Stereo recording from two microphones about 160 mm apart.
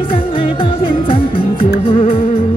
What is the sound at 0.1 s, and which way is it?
Music, 35° left (ahead or behind).